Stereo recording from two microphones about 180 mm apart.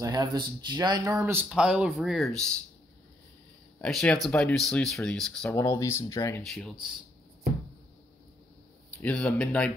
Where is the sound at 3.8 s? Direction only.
5° left (ahead or behind).